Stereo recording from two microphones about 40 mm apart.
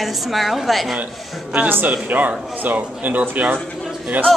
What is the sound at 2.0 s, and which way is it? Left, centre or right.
Speech, right.